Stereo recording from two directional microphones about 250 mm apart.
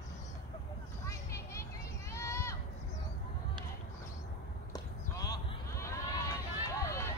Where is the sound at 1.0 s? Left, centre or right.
Centre.